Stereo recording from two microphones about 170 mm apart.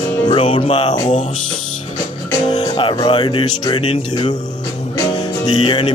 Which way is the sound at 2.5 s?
30° left (ahead or behind).